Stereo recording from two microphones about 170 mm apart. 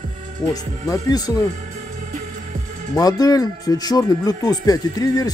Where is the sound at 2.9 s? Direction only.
20° left (ahead or behind).